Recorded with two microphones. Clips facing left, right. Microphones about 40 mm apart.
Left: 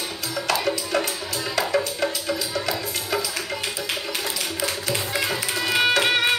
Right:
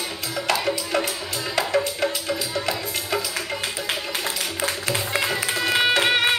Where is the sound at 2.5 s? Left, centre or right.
Centre.